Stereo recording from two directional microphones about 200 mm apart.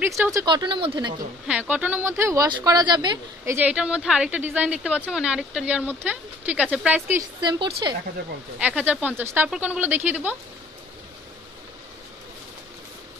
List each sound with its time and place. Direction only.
0.0 s speech: 15° right (ahead or behind)
1.5 s speech: 10° right (ahead or behind)
3.5 s a woman's voice: 5° right (ahead or behind)
7.4 s speech: 20° right (ahead or behind)
8.5 s speech: 5° right (ahead or behind)